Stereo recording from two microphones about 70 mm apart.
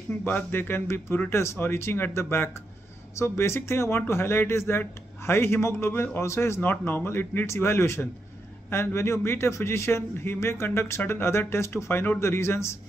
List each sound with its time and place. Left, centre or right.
0.1 s a man's voice: left
6.6 s a man's voice: left